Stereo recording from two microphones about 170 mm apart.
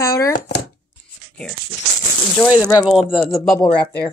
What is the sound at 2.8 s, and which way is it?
Speech, 5° right (ahead or behind).